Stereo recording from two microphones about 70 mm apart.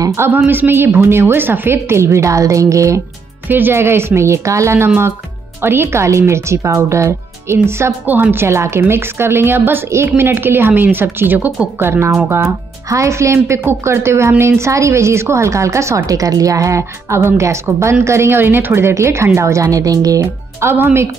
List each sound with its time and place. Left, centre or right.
0.5 s a woman's voice: right
3.4 s a woman's voice: right
11.8 s a woman's voice: right
12.9 s a woman's voice: right
20.2 s speech: right